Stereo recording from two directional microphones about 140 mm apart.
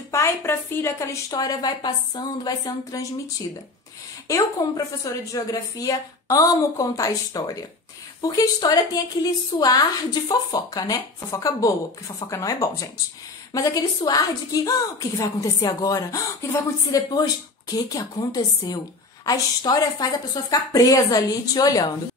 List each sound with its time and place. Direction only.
0.1 s a woman's voice: 20° left (ahead or behind)
4.3 s a woman's voice: 25° left (ahead or behind)